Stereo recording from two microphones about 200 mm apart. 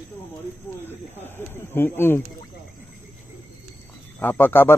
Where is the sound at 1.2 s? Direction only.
10° left (ahead or behind).